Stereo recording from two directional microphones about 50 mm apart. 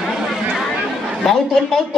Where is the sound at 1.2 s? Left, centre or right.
Centre.